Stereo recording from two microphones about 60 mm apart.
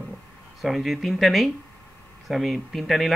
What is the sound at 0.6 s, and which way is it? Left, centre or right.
Speech, centre.